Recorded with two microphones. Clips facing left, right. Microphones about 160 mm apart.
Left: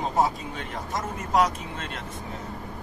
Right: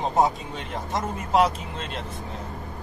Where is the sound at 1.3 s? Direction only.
30° right (ahead or behind).